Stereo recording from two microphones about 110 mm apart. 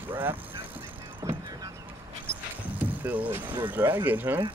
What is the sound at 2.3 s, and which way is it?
Dog, 15° right (ahead or behind).